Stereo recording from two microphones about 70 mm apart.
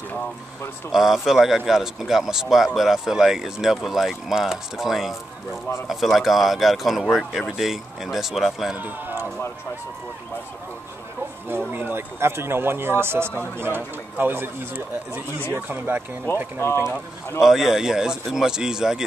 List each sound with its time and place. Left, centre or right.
0.9 s speech: centre
8.7 s speech: right
11.4 s speech: right
16.6 s speech: left
17.4 s speech: centre